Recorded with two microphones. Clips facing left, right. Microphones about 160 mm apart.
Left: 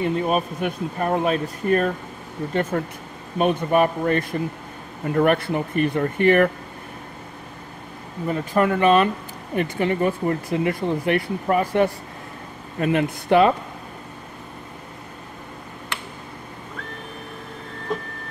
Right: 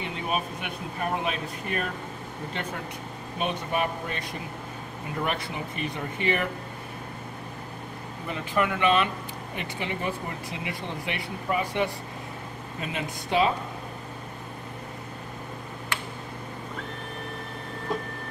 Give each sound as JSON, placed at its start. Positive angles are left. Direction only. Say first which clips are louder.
{"t": 0.0, "sound": "speech", "louder": "left 9 dB", "side_deg": 40}
{"t": 8.3, "sound": "speech", "louder": "left 7 dB", "side_deg": 45}